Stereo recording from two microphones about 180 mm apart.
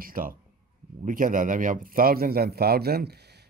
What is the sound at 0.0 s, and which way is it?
Speech, 50° right (ahead or behind).